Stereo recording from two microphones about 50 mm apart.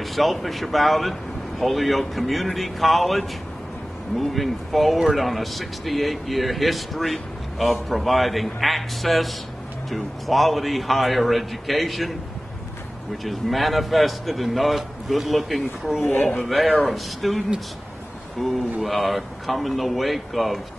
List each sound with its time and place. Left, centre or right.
0.0 s speech: centre
13.2 s speech: centre